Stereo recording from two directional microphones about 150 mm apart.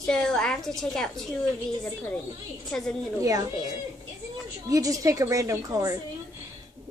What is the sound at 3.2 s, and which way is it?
Speech, 25° right (ahead or behind).